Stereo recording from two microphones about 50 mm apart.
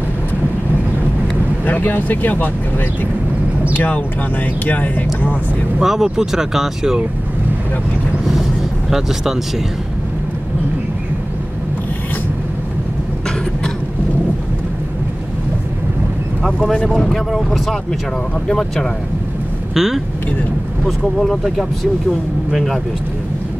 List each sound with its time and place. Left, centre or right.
1.8 s speech: left
3.7 s speech: left
5.8 s speech: centre
16.6 s speech: centre
16.9 s speech: centre
19.7 s speech: centre
20.8 s speech: centre